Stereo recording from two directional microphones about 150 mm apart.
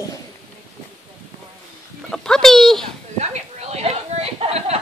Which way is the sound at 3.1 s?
50° right (ahead or behind).